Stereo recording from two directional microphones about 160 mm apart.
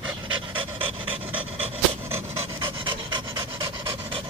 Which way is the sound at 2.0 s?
15° right (ahead or behind).